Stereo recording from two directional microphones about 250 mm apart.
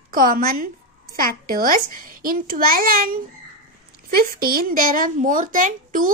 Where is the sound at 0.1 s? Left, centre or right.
Right.